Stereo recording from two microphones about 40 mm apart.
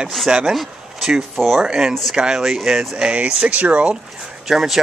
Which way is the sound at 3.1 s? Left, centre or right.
Right.